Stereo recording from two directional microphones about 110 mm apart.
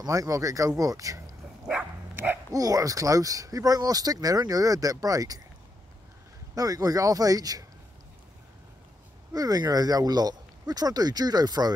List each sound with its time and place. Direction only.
0.0 s speech: 30° right (ahead or behind)
1.7 s dog: 15° right (ahead or behind)
2.5 s speech: 30° right (ahead or behind)
6.5 s speech: 30° right (ahead or behind)
9.3 s speech: 35° right (ahead or behind)